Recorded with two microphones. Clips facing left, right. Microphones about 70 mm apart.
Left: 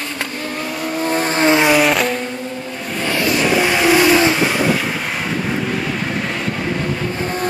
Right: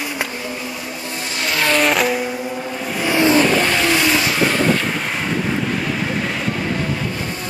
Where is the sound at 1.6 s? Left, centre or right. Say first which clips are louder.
Left 2 dB; centre.